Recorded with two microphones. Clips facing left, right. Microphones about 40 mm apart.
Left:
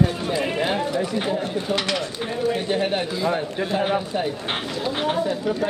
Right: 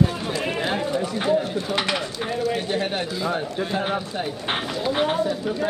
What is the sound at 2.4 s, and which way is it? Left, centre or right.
A man's voice, centre.